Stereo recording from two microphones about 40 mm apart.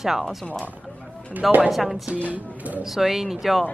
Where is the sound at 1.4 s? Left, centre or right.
Right.